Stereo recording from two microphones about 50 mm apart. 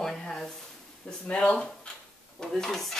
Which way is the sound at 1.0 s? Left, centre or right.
Left.